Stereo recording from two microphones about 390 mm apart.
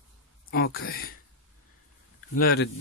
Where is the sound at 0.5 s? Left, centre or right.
Left.